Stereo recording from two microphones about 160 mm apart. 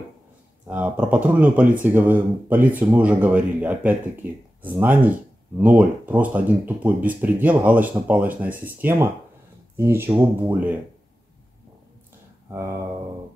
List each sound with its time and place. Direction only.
0.7 s speech: 5° right (ahead or behind)
12.4 s speech: 20° right (ahead or behind)